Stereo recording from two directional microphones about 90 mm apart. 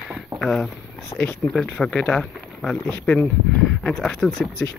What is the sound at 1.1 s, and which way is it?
Speech, 60° left (ahead or behind).